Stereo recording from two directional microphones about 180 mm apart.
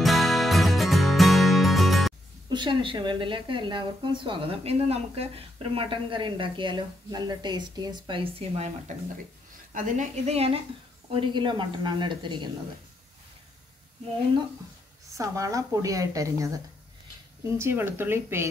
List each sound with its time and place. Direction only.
0.0 s music: centre (ahead or behind)
2.5 s a woman's voice: 25° right (ahead or behind)
15.1 s a woman's voice: 15° right (ahead or behind)